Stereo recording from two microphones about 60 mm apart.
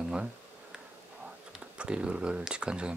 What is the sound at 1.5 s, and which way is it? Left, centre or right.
Speech, centre.